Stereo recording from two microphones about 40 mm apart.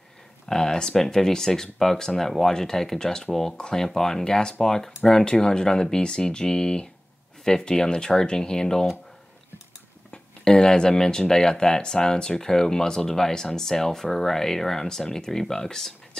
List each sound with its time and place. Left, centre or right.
0.5 s speech: centre
10.1 s speech: left